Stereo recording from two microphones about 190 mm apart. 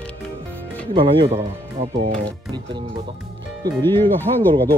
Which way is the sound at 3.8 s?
10° left (ahead or behind).